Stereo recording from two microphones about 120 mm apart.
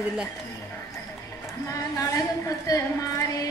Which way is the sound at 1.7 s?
30° left (ahead or behind).